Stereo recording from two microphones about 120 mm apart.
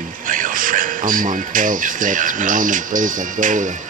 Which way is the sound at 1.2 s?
90° right.